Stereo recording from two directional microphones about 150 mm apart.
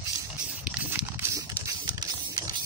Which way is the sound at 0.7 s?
15° right (ahead or behind).